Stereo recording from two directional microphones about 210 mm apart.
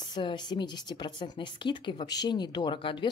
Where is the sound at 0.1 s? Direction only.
20° left (ahead or behind).